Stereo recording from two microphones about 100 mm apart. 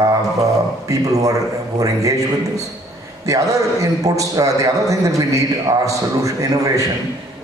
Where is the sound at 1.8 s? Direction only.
35° right (ahead or behind).